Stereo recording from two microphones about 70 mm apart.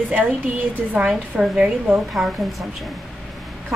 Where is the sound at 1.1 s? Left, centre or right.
Centre.